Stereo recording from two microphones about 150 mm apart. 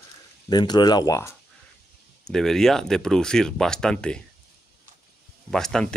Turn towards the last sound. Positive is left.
turn(degrees=5)  # may be behind; listen again after turning